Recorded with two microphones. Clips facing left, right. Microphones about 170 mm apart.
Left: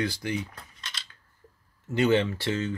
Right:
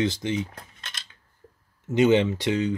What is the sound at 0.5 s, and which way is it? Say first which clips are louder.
Cutlery: right 1 dB; 50° right (ahead or behind).